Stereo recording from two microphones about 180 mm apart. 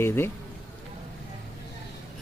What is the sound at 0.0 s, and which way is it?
Speech, 15° left (ahead or behind).